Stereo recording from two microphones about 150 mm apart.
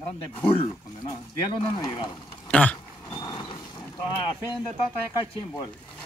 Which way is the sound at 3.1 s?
25° left (ahead or behind).